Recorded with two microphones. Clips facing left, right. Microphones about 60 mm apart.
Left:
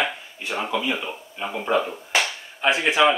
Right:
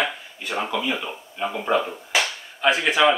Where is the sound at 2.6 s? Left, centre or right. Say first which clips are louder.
Even; centre.